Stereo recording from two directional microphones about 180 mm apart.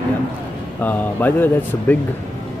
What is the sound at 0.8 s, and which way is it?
Speech, 10° left (ahead or behind).